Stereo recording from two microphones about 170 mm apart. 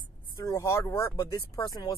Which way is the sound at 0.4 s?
15° left (ahead or behind).